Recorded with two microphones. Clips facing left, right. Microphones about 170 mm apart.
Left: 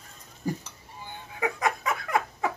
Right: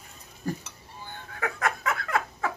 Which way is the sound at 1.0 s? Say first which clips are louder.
Left 3 dB; 15° left (ahead or behind).